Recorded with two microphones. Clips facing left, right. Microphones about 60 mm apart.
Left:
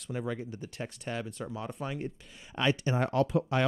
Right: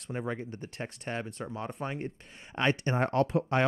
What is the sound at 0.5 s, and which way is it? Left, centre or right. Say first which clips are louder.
Speech: even; right.